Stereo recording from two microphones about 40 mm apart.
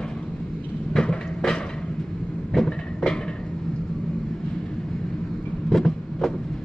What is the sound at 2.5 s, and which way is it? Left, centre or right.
Vehicle, centre.